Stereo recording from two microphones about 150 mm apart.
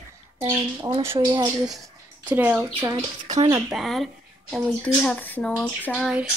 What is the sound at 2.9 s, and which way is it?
Speech, 25° right (ahead or behind).